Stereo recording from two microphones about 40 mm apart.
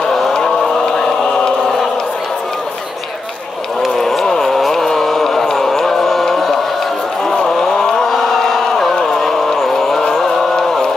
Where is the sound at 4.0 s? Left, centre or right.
Centre.